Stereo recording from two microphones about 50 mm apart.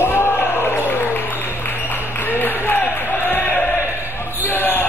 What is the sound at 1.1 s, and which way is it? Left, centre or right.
Applause, left.